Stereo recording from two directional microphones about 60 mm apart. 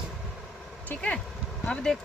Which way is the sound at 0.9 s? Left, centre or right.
Left.